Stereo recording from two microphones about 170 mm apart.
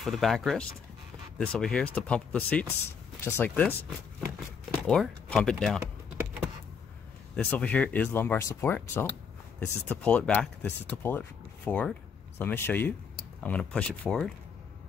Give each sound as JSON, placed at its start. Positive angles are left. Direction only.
{"t": 0.0, "sound": "speech", "side_deg": 0}
{"t": 4.2, "sound": "a sound", "side_deg": -15}
{"t": 4.8, "sound": "speech", "side_deg": 5}
{"t": 7.3, "sound": "speech", "side_deg": 10}